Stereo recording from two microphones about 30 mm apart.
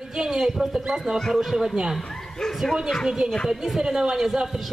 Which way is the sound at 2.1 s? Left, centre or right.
Centre.